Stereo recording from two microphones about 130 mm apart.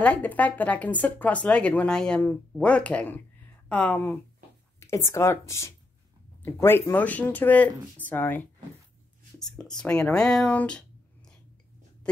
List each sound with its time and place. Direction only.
0.0 s speech: 10° left (ahead or behind)
9.6 s speech: 5° left (ahead or behind)